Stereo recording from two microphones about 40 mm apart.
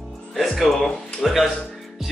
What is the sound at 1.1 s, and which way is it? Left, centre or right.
Speech, centre.